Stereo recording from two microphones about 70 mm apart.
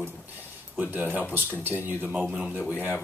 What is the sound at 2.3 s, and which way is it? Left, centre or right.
Speech, centre.